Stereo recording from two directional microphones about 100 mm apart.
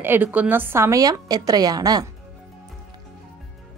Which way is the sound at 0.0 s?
20° right (ahead or behind).